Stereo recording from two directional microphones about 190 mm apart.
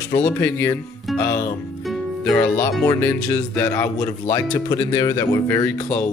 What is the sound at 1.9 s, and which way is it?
Music, 5° left (ahead or behind).